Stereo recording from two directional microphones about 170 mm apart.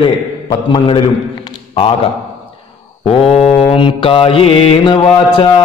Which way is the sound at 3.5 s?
30° left (ahead or behind).